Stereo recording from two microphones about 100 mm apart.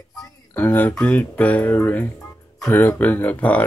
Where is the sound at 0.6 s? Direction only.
20° left (ahead or behind).